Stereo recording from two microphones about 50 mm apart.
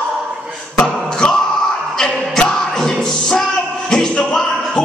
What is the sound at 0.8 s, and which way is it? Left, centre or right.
Beatboxing, centre.